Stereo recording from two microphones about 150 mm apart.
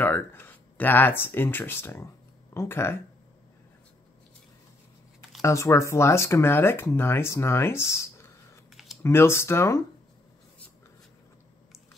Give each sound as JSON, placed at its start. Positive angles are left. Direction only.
{"t": 0.0, "sound": "speech", "side_deg": 15}
{"t": 5.4, "sound": "speech", "side_deg": 20}